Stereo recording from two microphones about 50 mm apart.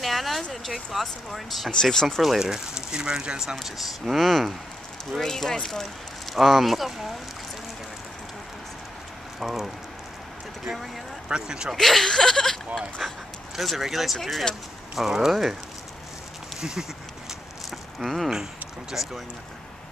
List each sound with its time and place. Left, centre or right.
0.0 s a sound: centre
1.0 s speech: centre
1.7 s speech: centre
2.2 s speech: centre
3.6 s speech: centre
9.4 s speech: centre
11.7 s speech: centre
17.3 s a sound: centre
18.3 s speech: centre